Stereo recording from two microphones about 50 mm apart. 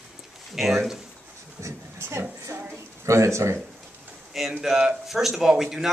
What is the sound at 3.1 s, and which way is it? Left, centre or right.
Speech, right.